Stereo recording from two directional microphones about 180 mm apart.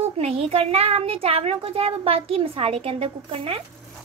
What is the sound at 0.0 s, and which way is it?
A child's voice, 35° right (ahead or behind).